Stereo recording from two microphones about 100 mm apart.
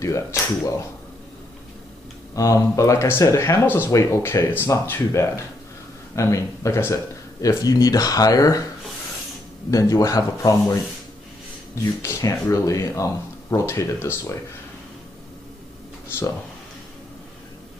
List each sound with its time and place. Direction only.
0.0 s speech: 30° left (ahead or behind)
2.3 s speech: 30° left (ahead or behind)
9.7 s speech: 35° left (ahead or behind)
12.0 s speech: 30° left (ahead or behind)